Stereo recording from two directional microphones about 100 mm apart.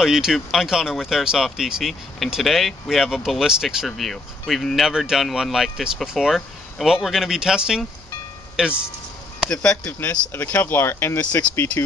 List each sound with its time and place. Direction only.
0.0 s speech: 5° right (ahead or behind)
9.5 s speech: 10° left (ahead or behind)